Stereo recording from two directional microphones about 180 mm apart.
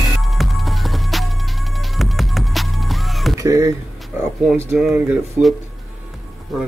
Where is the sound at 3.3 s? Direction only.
20° right (ahead or behind).